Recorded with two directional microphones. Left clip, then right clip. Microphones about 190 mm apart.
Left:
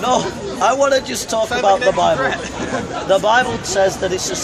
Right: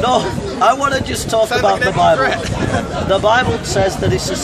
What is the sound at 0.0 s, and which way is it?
A man's voice, 15° left (ahead or behind).